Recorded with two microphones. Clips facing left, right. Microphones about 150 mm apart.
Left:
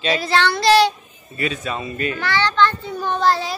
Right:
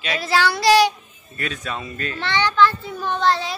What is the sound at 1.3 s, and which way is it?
Speech, 5° left (ahead or behind).